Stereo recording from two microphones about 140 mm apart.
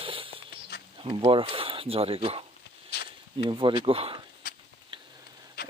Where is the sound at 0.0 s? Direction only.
40° right (ahead or behind).